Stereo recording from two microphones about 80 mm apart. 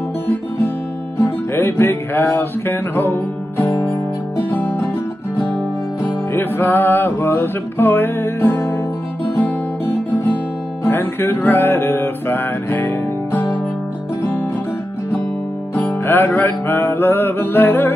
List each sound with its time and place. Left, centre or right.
1.2 s music: left
6.3 s music: left
10.9 s music: left
16.1 s music: left